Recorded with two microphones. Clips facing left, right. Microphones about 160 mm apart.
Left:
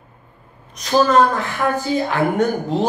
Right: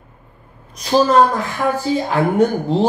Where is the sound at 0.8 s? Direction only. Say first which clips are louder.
Right 1 dB; 35° right (ahead or behind).